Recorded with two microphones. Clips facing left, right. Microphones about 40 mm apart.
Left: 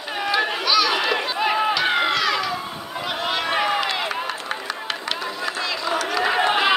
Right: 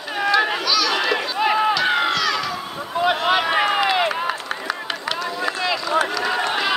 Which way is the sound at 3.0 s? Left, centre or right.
Centre.